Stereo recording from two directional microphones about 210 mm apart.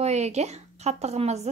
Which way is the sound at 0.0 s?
30° right (ahead or behind).